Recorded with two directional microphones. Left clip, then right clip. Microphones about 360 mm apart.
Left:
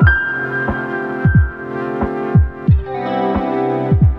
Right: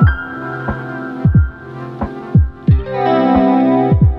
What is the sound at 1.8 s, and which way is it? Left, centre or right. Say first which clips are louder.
Music: left 6 dB; centre.